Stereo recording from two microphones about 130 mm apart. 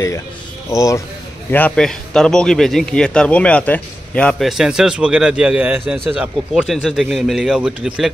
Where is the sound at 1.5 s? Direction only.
10° left (ahead or behind); by 6.3 s 10° right (ahead or behind).